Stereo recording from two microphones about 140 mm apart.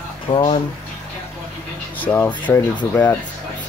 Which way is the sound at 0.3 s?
40° left (ahead or behind).